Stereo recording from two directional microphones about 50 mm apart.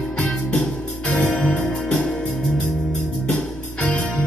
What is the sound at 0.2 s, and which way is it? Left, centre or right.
Music, left.